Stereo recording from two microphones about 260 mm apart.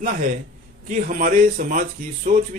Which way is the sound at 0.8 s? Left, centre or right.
Right.